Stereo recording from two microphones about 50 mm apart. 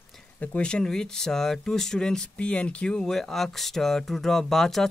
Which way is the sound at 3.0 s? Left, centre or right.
Centre.